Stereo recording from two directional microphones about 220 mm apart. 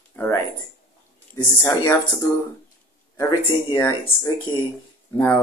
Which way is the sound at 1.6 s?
15° left (ahead or behind).